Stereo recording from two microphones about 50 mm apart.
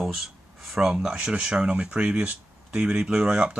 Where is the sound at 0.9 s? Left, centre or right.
Centre.